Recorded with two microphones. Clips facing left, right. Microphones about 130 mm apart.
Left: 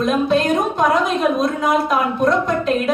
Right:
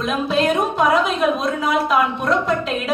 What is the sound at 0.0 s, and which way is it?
Speech, centre (ahead or behind).